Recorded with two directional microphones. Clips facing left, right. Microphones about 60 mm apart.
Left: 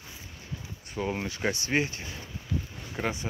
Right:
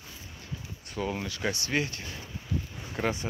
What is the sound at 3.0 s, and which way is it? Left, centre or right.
Speech, centre.